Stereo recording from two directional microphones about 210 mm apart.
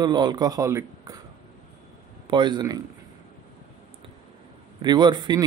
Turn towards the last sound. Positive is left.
turn(degrees=-20)  # may be behind; listen again after turning